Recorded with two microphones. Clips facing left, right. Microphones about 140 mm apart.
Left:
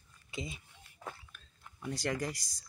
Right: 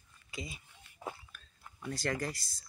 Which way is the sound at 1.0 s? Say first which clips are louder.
Right 3 dB; 15° right (ahead or behind).